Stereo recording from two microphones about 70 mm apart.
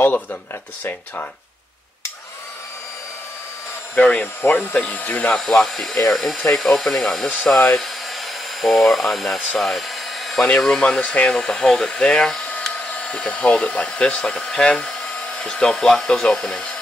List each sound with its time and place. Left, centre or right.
0.0 s speech: left
3.9 s speech: centre
5.3 s speech: centre
9.6 s a sound: centre
10.6 s speech: centre